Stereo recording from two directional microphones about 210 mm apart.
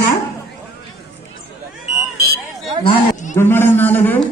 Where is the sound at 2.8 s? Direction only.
35° left (ahead or behind).